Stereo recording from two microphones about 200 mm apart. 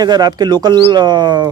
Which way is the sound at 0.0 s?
20° right (ahead or behind).